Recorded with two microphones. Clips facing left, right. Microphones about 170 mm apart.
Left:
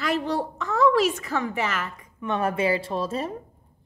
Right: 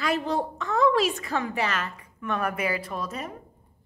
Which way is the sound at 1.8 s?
20° left (ahead or behind).